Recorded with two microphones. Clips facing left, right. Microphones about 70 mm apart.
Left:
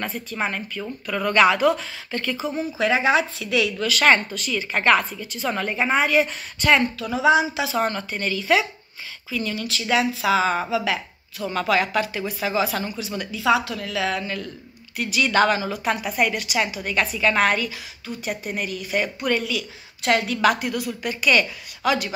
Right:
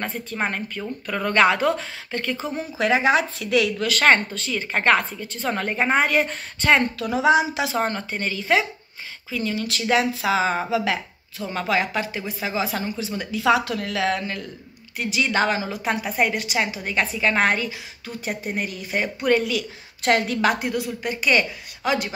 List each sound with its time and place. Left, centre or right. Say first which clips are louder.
0.0 s speech: even; right
2.9 s speech: right 1 dB; right
4.0 s speech: even; right
7.1 s speech: even; right
9.7 s speech: even; right
20.4 s speech: left 1 dB; right